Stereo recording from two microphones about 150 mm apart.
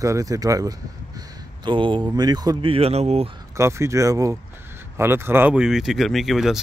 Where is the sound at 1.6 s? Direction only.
35° right (ahead or behind).